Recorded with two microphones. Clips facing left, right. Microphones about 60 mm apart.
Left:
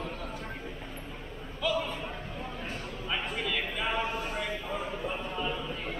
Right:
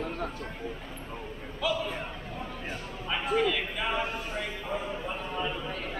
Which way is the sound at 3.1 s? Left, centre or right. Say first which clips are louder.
Right 6 dB; centre.